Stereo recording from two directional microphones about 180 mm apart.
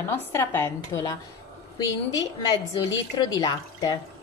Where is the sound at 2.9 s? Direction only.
20° left (ahead or behind).